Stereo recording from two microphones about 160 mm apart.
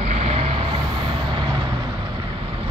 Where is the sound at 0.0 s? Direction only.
40° right (ahead or behind).